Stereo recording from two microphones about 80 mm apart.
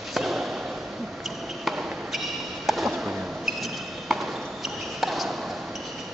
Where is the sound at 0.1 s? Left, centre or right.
Centre.